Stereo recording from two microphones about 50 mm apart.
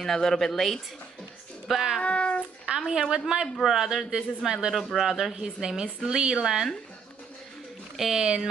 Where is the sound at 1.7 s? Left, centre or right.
Centre.